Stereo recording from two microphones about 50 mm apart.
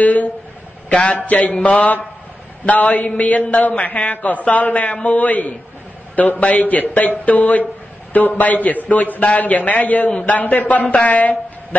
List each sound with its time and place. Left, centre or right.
0.0 s a man's voice: left